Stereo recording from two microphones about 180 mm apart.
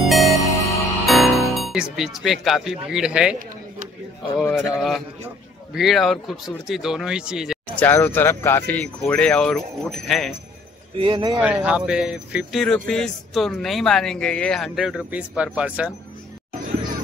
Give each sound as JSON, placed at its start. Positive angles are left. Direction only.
{"t": 0.0, "sound": "music", "side_deg": 0}
{"t": 1.0, "sound": "speech", "side_deg": 0}
{"t": 4.4, "sound": "a man's voice", "side_deg": 0}
{"t": 7.8, "sound": "speech", "side_deg": 10}
{"t": 11.0, "sound": "speech", "side_deg": -25}
{"t": 11.3, "sound": "a man's voice", "side_deg": -5}